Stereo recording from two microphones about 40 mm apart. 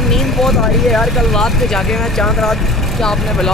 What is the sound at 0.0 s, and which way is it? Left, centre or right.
Speech, centre.